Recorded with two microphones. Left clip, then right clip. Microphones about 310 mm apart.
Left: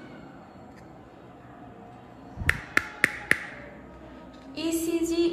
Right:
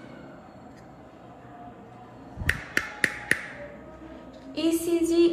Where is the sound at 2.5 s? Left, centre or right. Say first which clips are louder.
Left 2 dB; centre.